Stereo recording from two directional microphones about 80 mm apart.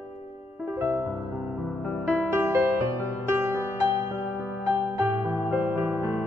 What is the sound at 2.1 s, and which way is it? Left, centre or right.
Music, right.